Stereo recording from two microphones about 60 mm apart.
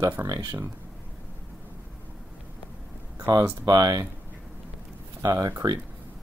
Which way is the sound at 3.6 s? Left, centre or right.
Right.